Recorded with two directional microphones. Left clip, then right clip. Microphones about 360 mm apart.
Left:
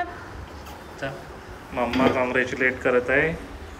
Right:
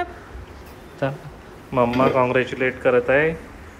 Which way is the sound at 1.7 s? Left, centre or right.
Centre.